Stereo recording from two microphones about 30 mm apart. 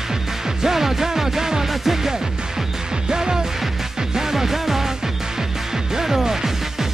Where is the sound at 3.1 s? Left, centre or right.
Right.